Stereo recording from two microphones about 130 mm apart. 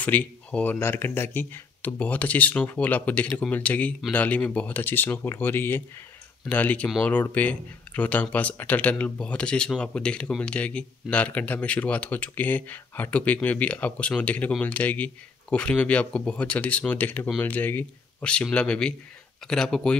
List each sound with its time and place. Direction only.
0.0 s speech: 10° left (ahead or behind)